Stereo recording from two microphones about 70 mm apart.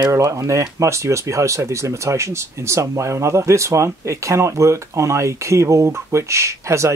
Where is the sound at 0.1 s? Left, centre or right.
Right.